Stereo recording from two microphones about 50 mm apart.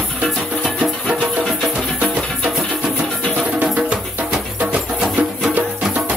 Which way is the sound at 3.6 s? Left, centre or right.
Right.